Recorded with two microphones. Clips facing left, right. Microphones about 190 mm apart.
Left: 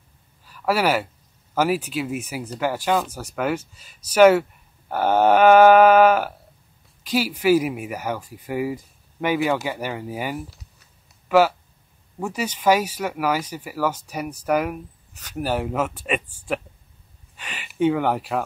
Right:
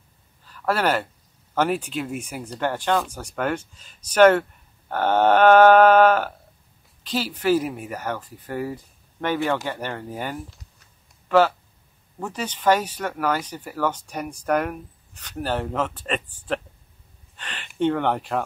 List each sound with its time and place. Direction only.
0.5 s speech: 10° left (ahead or behind)